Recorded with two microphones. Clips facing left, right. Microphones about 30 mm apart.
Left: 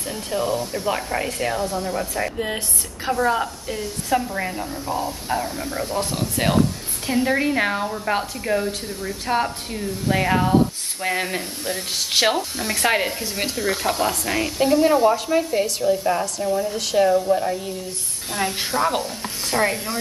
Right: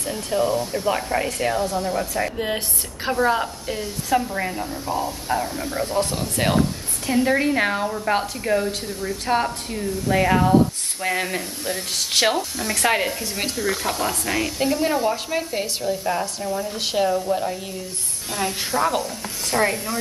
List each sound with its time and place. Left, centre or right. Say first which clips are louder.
0.0 s a woman's voice: right 2 dB; centre
18.4 s a woman's voice: even; centre
19.5 s a woman's voice: even; centre